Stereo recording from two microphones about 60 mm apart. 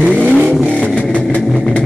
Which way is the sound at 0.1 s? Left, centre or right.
Centre.